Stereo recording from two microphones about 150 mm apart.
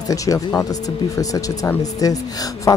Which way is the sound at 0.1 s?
25° left (ahead or behind).